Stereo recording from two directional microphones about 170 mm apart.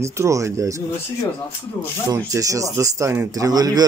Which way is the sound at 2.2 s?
20° right (ahead or behind).